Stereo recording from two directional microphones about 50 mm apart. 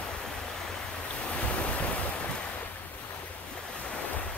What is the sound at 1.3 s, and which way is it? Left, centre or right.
Waves, left.